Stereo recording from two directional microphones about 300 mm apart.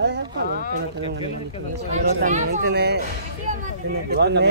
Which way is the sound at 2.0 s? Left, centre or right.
Right.